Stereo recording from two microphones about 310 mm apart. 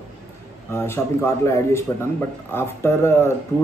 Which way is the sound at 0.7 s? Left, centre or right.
Centre.